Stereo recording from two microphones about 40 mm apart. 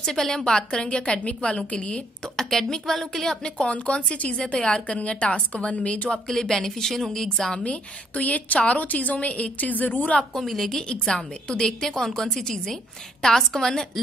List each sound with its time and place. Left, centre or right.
0.0 s a woman's voice: centre; by 2.0 s left
2.3 s a woman's voice: centre
3.5 s a woman's voice: left
4.8 s a woman's voice: left
6.1 s a woman's voice: centre
7.5 s a woman's voice: left
10.3 s a woman's voice: centre
10.9 s a woman's voice: left